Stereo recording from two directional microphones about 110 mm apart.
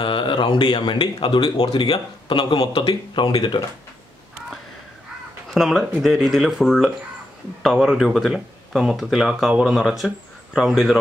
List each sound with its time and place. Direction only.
0.0 s speech: 50° left (ahead or behind)
5.5 s speech: centre (ahead or behind)